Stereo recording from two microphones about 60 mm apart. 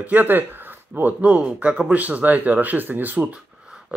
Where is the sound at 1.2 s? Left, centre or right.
Right.